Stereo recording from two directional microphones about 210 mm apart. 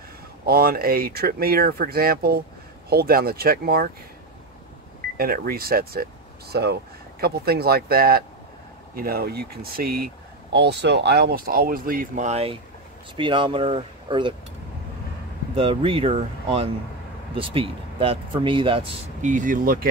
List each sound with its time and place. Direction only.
0.5 s speech: 45° right (ahead or behind)
5.1 s speech: 45° right (ahead or behind); by 14.3 s 25° right (ahead or behind)
15.5 s speech: 25° right (ahead or behind)
19.3 s speech: 40° right (ahead or behind)